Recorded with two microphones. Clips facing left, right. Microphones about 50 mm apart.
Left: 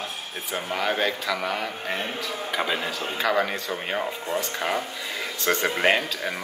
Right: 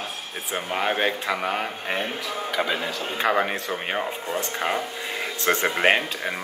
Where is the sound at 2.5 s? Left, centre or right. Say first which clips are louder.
Right 1 dB; centre.